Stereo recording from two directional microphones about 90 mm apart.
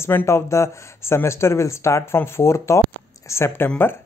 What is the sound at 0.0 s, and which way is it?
Speech, 25° left (ahead or behind).